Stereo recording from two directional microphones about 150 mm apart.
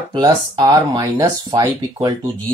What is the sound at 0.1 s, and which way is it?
Speech, 25° right (ahead or behind).